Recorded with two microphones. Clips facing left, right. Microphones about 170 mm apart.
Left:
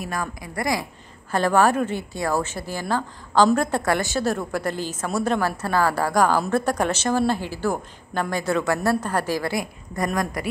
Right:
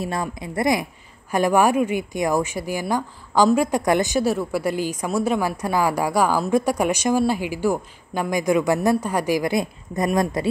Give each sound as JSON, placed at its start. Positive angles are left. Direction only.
{"t": 0.0, "sound": "a woman's voice", "side_deg": -25}